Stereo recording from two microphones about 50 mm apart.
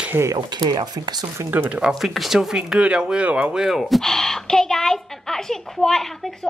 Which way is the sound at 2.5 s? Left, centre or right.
Right.